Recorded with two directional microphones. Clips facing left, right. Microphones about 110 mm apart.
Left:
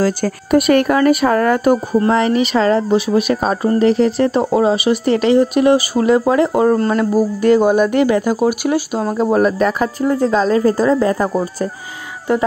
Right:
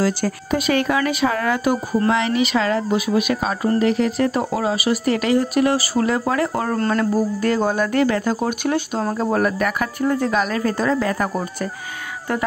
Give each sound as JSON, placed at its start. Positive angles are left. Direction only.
{"t": 0.5, "sound": "speech", "side_deg": 60}
{"t": 9.1, "sound": "speech", "side_deg": 20}
{"t": 12.3, "sound": "speech", "side_deg": 20}